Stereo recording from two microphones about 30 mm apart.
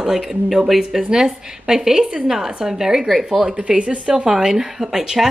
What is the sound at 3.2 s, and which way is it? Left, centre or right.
Speech, right.